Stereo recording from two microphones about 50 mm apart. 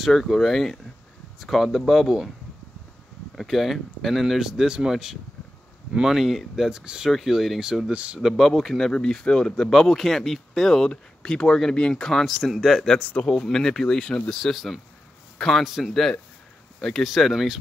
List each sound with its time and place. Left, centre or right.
0.0 s speech: centre
3.3 s speech: centre
6.7 s speech: centre
7.1 s speech: centre
7.9 s speech: right
8.4 s speech: centre
9.7 s speech: centre
13.0 s speech: left
13.5 s speech: centre
14.3 s speech: centre
15.3 s a sound: centre
15.6 s speech: centre